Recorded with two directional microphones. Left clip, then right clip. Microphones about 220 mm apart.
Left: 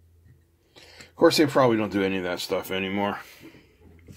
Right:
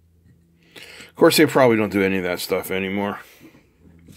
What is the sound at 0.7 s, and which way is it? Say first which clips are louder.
Speech: right 6 dB; 35° right (ahead or behind).